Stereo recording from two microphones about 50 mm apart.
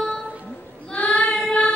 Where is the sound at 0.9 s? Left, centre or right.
Left.